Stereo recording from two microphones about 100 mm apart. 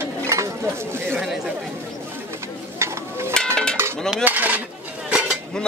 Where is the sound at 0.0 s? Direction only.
30° right (ahead or behind).